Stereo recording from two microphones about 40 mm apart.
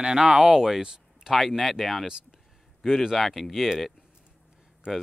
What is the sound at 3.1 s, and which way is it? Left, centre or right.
Speech, centre.